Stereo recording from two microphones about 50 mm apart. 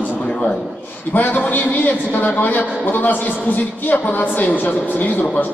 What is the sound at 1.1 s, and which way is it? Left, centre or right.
A man's voice, left.